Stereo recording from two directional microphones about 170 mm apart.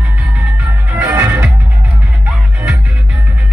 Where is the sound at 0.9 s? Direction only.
15° right (ahead or behind).